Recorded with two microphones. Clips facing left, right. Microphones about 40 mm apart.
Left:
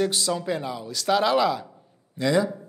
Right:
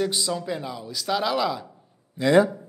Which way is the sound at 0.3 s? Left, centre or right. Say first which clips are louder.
Left 2 dB; centre.